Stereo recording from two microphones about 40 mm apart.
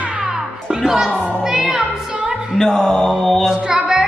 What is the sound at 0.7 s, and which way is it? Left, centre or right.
Speech, centre.